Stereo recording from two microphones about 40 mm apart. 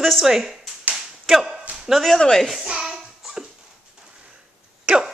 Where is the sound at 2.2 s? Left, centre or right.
Centre.